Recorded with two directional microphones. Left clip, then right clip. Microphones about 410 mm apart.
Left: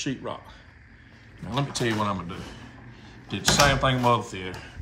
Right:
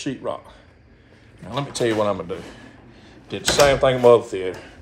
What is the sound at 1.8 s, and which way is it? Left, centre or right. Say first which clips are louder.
Speech: right 9 dB; centre.